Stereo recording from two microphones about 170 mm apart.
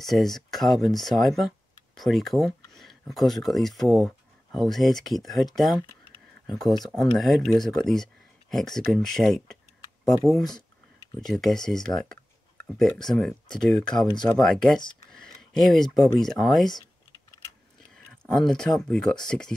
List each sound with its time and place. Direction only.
0.0 s speech: centre (ahead or behind)
5.8 s a sound: 25° left (ahead or behind)
6.5 s speech: centre (ahead or behind)
17.9 s speech: 5° left (ahead or behind)